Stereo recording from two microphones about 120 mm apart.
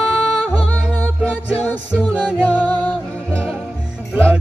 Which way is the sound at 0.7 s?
10° left (ahead or behind).